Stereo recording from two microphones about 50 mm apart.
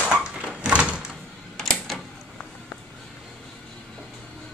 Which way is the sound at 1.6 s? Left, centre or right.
Centre.